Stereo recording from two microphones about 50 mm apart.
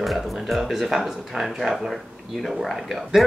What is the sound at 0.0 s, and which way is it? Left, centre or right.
Speech, centre.